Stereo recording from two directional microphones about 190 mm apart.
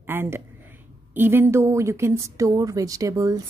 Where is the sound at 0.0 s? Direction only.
10° right (ahead or behind).